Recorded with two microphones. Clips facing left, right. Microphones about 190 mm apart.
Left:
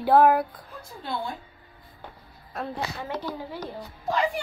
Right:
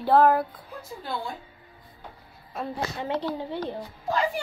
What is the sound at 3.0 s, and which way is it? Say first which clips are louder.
Speech: right 4 dB; 25° right (ahead or behind).